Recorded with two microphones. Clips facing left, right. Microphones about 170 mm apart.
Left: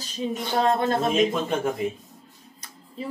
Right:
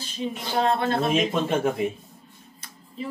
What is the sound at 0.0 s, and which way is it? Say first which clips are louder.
Speech: left 2 dB; 40° left (ahead or behind).